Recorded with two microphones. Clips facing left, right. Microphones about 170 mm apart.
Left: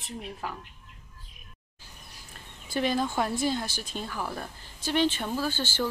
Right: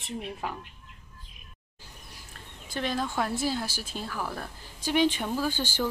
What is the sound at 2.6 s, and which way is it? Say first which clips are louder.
A woman's voice: left 3 dB; 5° left (ahead or behind).